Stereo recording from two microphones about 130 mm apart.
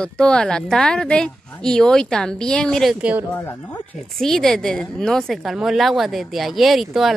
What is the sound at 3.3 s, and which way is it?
Speech, 15° left (ahead or behind).